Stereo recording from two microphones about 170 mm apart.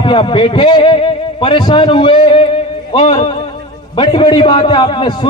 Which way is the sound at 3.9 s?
30° left (ahead or behind).